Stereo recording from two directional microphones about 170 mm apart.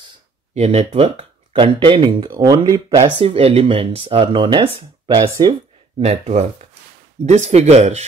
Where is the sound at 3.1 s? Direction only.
35° right (ahead or behind).